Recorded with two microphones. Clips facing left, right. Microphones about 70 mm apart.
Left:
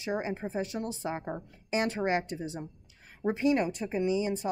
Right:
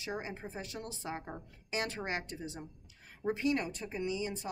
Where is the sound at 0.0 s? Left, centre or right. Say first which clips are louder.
Left 7 dB; left.